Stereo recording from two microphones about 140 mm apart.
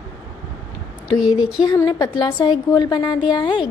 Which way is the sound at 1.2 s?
5° right (ahead or behind).